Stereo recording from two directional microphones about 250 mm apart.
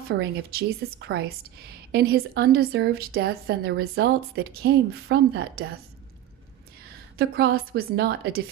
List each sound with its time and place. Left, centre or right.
0.1 s a woman's voice: right
6.8 s a woman's voice: right